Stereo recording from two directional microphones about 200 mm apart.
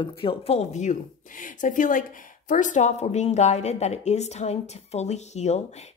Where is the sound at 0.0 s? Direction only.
25° left (ahead or behind).